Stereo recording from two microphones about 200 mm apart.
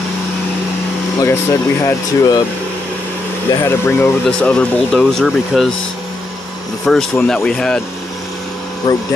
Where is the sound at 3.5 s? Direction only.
10° left (ahead or behind).